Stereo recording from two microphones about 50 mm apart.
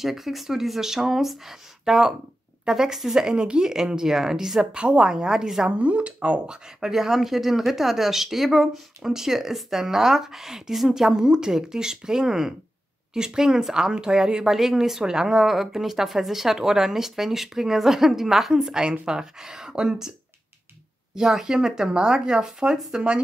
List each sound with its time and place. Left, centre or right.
0.0 s speech: centre
4.7 s speech: right
5.8 s speech: right